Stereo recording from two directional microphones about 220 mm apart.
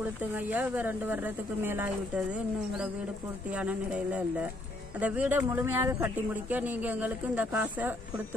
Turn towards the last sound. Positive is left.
turn(degrees=-10)  # may be behind; listen again after turning